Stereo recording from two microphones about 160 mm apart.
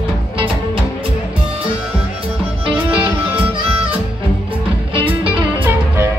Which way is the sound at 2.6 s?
30° right (ahead or behind).